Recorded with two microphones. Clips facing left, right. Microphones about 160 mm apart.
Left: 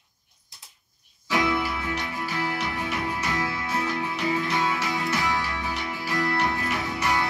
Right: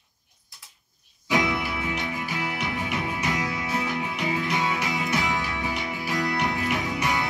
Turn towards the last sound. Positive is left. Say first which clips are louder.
# even
turn(degrees=-15)  # may be behind; listen again after turning